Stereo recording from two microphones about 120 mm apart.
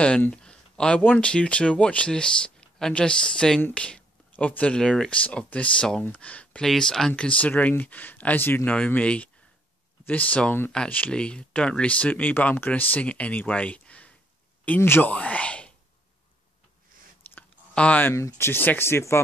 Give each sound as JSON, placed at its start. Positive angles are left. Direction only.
{"t": 0.0, "sound": "speech", "side_deg": 10}
{"t": 17.4, "sound": "a sound", "side_deg": 10}
{"t": 18.1, "sound": "speech", "side_deg": 25}